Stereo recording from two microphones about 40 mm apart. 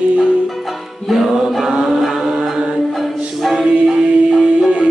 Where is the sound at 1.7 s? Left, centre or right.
Right.